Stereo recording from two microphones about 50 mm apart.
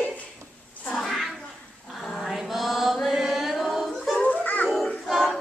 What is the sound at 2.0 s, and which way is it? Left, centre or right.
Female singing, centre.